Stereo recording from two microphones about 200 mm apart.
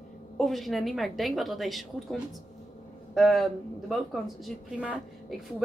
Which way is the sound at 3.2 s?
Centre (ahead or behind).